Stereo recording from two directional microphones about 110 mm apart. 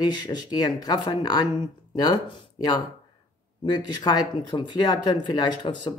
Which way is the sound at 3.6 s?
40° left (ahead or behind).